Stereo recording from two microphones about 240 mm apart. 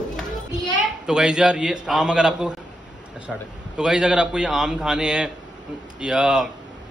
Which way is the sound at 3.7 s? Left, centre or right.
Centre.